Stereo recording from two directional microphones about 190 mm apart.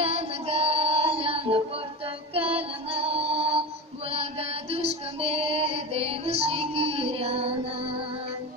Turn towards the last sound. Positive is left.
turn(degrees=-30)  # may be behind; listen again after turning